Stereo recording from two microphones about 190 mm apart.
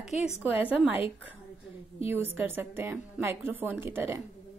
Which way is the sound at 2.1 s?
10° right (ahead or behind).